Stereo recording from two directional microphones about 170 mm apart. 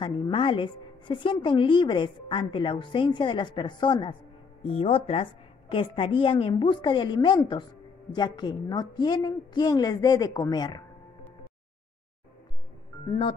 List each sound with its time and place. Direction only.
0.0 s a woman's voice: 30° left (ahead or behind)